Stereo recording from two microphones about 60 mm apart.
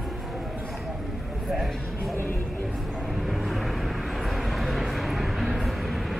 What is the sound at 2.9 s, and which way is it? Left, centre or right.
Vehicle, centre.